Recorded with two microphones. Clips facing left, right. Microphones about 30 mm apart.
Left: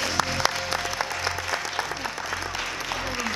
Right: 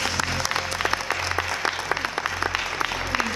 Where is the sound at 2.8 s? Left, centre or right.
Right.